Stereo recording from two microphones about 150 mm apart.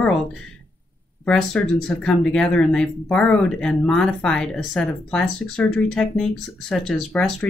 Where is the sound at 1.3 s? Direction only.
5° left (ahead or behind).